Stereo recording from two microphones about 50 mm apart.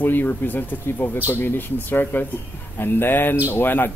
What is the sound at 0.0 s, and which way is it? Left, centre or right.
Speech, left.